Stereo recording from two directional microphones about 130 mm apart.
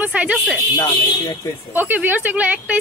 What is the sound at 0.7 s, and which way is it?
Speech, 25° left (ahead or behind).